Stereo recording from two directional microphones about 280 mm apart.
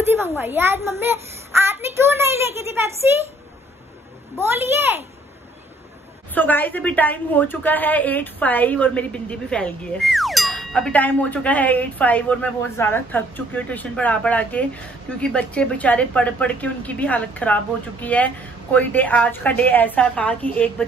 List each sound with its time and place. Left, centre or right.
0.0 s a sound: centre
0.4 s a child's voice: centre
6.3 s a woman's voice: centre